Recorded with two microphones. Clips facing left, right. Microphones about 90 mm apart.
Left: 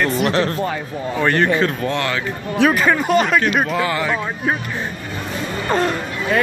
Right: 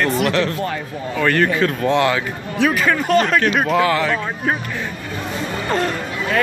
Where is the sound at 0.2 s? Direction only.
30° left (ahead or behind).